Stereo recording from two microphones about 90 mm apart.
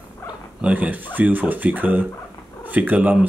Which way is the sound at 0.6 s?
15° right (ahead or behind).